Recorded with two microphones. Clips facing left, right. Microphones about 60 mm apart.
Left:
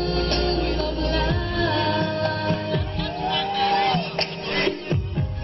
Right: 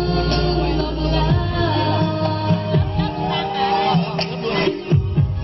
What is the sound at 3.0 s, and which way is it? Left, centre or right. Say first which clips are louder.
Music: right 4 dB; right.